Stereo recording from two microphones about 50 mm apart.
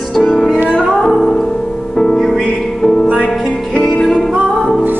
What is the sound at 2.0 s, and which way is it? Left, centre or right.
Music, centre.